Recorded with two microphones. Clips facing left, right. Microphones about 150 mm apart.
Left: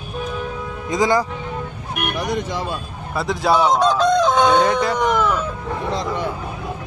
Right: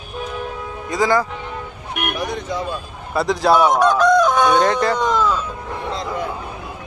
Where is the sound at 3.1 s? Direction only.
Centre (ahead or behind).